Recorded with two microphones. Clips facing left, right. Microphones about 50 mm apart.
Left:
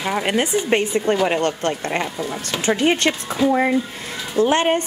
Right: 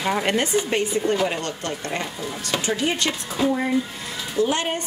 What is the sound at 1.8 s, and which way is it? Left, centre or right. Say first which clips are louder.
Speech: left 5 dB; left.